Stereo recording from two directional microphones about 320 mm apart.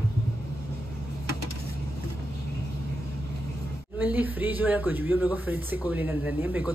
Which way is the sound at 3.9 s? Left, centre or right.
Centre.